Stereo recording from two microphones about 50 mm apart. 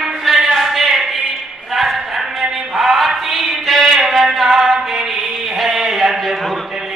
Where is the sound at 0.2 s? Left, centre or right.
Centre.